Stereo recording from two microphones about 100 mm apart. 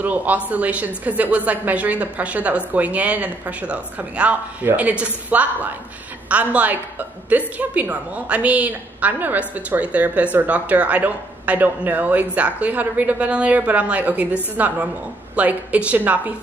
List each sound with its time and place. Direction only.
0.0 s a woman's voice: 15° right (ahead or behind)